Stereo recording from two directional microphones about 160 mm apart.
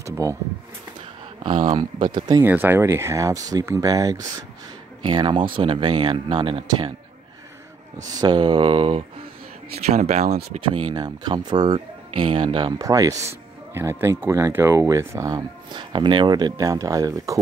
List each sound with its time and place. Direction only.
0.0 s a sound: 20° right (ahead or behind)
2.1 s speech: 25° right (ahead or behind)
2.4 s speech: 10° right (ahead or behind); by 6.9 s 30° right (ahead or behind)
8.1 s speech: 25° right (ahead or behind)